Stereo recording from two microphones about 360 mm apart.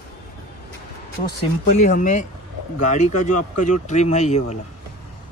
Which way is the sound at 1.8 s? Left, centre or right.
Left.